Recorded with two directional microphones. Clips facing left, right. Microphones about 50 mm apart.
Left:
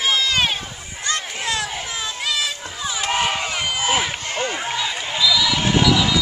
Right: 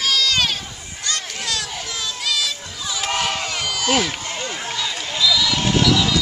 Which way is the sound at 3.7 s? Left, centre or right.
Centre.